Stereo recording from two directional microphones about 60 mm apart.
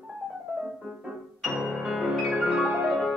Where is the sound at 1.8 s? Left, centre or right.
Centre.